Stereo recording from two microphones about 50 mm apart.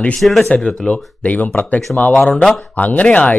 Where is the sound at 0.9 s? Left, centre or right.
Left.